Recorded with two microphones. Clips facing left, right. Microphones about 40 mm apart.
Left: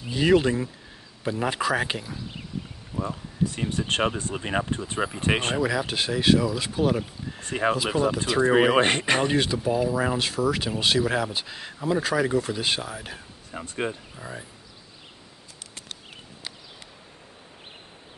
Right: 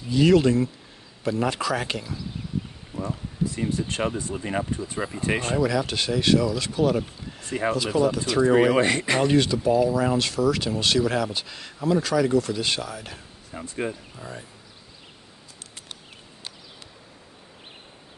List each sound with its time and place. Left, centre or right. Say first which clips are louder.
0.1 s speech: right 2 dB; centre
3.5 s speech: even; left
5.6 s speech: right 1 dB; centre
7.3 s horse: left 1 dB; left
7.9 s speech: right 1 dB; left
8.8 s speech: even; left
9.2 s speech: right 3 dB; centre